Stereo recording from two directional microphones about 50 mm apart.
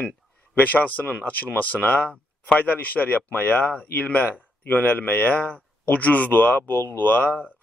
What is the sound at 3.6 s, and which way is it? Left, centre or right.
A man's voice, left.